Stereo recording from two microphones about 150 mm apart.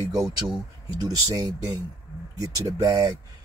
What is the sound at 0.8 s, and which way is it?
Speech, 25° right (ahead or behind).